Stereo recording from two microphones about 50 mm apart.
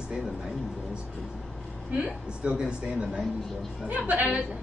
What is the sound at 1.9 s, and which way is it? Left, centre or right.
Speech, right.